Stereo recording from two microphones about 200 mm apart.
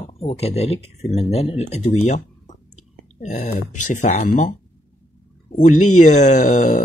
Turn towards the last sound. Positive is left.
turn(degrees=40)  # may be behind; listen again after turning